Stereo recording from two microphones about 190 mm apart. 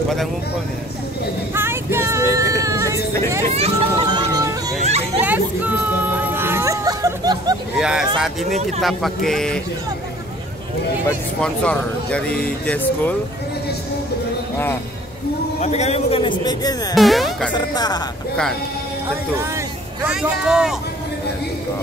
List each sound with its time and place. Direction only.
1.5 s vehicle: 10° right (ahead or behind)
2.3 s a sound: 15° right (ahead or behind)
3.5 s children playing: 30° right (ahead or behind)
4.8 s children playing: 35° right (ahead or behind)
5.2 s a sound: 10° right (ahead or behind)
7.7 s speech: 5° right (ahead or behind)
11.4 s speech: 5° left (ahead or behind)
15.6 s a man's voice: 35° left (ahead or behind)
16.9 s speech: centre (ahead or behind)
17.6 s a man's voice: 20° left (ahead or behind)
19.5 s speech: 10° right (ahead or behind)